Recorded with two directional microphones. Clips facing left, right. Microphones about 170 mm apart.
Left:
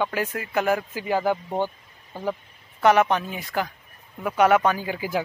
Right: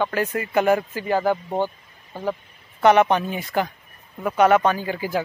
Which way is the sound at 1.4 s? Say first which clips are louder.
Right 2 dB; 10° right (ahead or behind).